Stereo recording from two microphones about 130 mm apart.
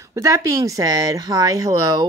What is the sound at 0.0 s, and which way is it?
Speech, 25° right (ahead or behind).